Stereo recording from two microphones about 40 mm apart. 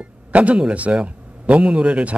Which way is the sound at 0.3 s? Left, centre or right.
Right.